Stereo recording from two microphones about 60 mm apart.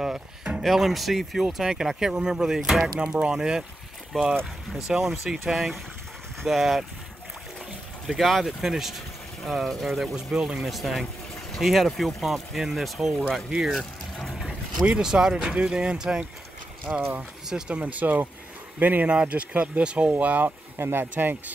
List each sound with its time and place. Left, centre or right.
0.0 s speech: centre
4.8 s speech: centre
8.1 s speech: centre
13.7 s a sound: centre
14.9 s speech: centre; by 21.4 s right